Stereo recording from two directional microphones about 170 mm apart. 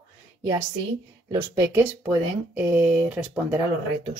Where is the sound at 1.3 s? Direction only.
20° right (ahead or behind).